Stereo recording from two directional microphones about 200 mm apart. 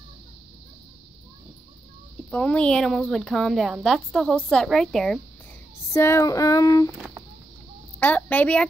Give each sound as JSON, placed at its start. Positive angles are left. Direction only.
{"t": 2.3, "sound": "a woman's voice", "side_deg": 5}
{"t": 5.9, "sound": "female singing", "side_deg": 15}
{"t": 8.0, "sound": "female singing", "side_deg": 10}